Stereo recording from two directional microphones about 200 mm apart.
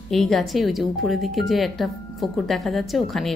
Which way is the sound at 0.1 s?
Centre (ahead or behind).